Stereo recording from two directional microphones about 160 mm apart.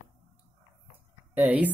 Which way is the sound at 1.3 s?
10° right (ahead or behind).